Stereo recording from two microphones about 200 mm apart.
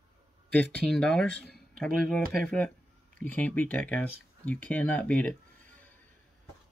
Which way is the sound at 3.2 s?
5° left (ahead or behind).